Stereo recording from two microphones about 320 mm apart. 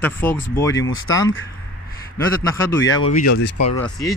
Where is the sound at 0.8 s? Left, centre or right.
Left.